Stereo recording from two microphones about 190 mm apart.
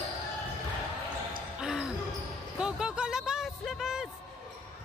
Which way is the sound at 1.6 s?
Centre (ahead or behind).